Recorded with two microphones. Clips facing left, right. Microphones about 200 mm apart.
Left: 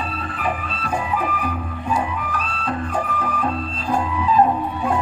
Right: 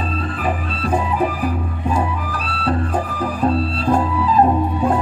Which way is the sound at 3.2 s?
35° right (ahead or behind).